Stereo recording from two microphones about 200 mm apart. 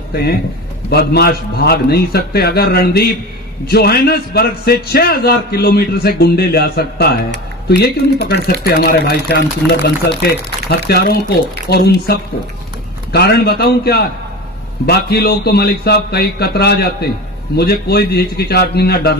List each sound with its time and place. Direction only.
0.1 s a man's voice: 55° left (ahead or behind)
10.7 s a man's voice: 50° left (ahead or behind)